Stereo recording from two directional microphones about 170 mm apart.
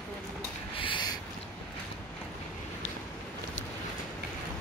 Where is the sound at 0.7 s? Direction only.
30° left (ahead or behind).